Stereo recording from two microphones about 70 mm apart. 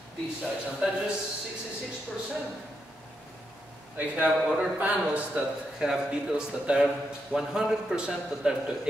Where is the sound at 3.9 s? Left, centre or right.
Right.